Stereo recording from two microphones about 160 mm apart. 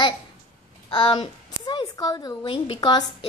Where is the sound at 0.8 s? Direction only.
30° left (ahead or behind).